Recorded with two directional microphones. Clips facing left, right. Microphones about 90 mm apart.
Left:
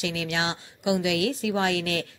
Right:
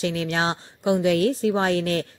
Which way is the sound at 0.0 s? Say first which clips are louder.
Right 4 dB; 35° right (ahead or behind).